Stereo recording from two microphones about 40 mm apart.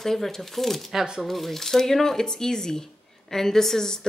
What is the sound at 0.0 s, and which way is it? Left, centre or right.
A woman's voice, centre.